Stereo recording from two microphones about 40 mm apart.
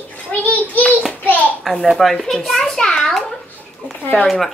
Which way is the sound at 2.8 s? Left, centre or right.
Left.